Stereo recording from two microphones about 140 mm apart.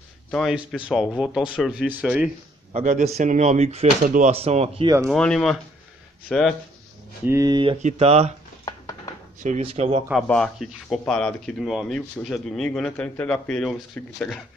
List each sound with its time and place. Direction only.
0.3 s a man's voice: centre (ahead or behind)
2.7 s speech: 60° right (ahead or behind)
4.8 s speech: 20° right (ahead or behind)
5.1 s speech: 5° left (ahead or behind)
7.2 s speech: 20° right (ahead or behind)
7.8 s speech: 50° right (ahead or behind)
8.6 s a sound: 25° left (ahead or behind)
9.6 s speech: 45° right (ahead or behind)
10.1 s speech: 5° left (ahead or behind)